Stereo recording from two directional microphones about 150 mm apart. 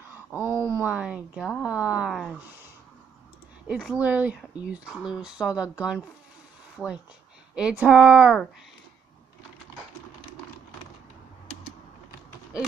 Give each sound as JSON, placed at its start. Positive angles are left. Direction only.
{"t": 0.1, "sound": "a sound", "side_deg": -15}
{"t": 0.8, "sound": "speech", "side_deg": -10}
{"t": 3.6, "sound": "speech", "side_deg": -5}